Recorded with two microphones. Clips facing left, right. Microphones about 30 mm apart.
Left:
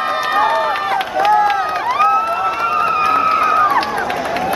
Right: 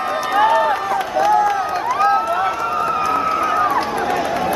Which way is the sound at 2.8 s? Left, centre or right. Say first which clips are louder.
Left 5 dB; left.